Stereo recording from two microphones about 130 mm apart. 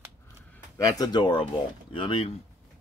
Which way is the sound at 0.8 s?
30° left (ahead or behind).